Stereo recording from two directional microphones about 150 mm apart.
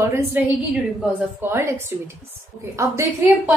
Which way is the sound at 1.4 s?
15° right (ahead or behind).